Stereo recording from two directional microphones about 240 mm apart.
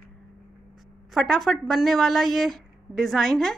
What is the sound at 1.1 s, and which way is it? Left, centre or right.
A woman's voice, centre.